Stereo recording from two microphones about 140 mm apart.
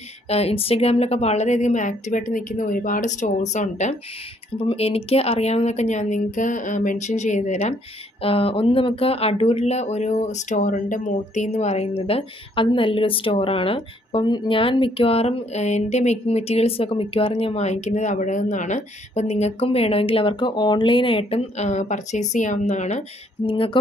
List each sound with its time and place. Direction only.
0.3 s a woman's voice: 45° left (ahead or behind)
4.6 s a woman's voice: 45° left (ahead or behind)
8.2 s speech: 40° left (ahead or behind)
23.4 s speech: 35° left (ahead or behind)